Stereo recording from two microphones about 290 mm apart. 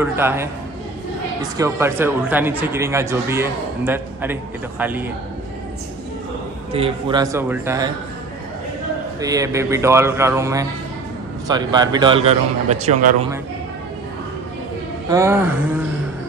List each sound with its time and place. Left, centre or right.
0.0 s a man's voice: centre
1.6 s a man's voice: centre
6.7 s a man's voice: centre
9.2 s a man's voice: centre
15.0 s a man's voice: centre